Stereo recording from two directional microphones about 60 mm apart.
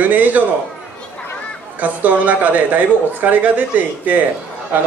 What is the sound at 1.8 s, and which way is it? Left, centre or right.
A man's voice, right.